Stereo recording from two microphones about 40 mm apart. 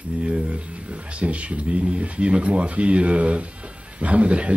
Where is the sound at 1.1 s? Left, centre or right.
Right.